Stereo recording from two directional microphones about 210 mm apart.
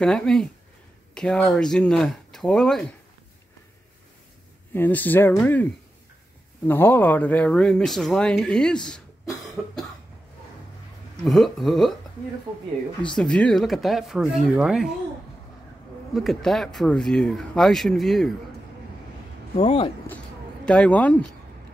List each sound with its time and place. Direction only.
0.0 s speech: 5° left (ahead or behind)
4.7 s speech: 10° left (ahead or behind)
11.2 s speech: centre (ahead or behind)
13.1 s speech: 5° left (ahead or behind)
16.2 s speech: centre (ahead or behind)
19.5 s speech: 25° left (ahead or behind)
20.6 s speech: 5° left (ahead or behind)